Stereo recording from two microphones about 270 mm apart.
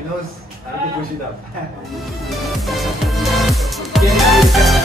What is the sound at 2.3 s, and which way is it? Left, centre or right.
Music, centre.